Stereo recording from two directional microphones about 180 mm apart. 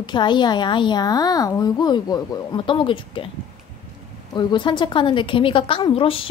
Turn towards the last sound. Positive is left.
turn(degrees=30)  # may be behind; listen again after turning